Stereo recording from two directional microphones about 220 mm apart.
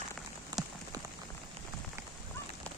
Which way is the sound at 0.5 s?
20° right (ahead or behind).